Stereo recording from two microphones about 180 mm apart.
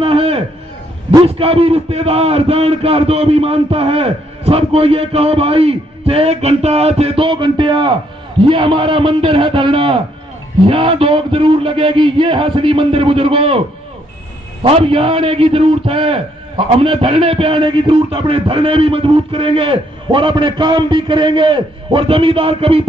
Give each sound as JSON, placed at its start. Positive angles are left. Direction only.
{"t": 0.0, "sound": "a sound", "side_deg": -30}
{"t": 1.2, "sound": "a man's voice", "side_deg": -35}
{"t": 14.6, "sound": "a man's voice", "side_deg": -30}